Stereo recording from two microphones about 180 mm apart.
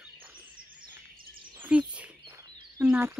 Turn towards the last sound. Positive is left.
turn(degrees=-10)  # may be behind; listen again after turning